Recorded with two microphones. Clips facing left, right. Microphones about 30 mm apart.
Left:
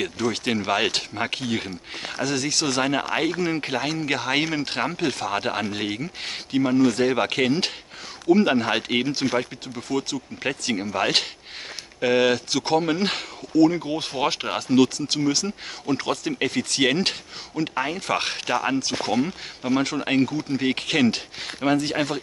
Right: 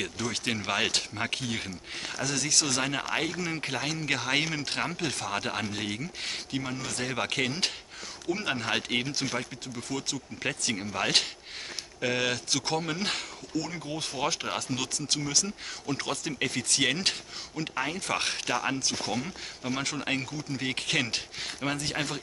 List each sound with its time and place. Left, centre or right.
0.0 s speech: centre
18.9 s speech: left
19.6 s speech: centre
20.3 s speech: left
20.6 s speech: centre